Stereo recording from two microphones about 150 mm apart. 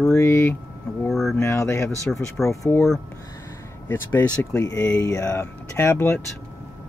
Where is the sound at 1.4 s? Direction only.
20° left (ahead or behind).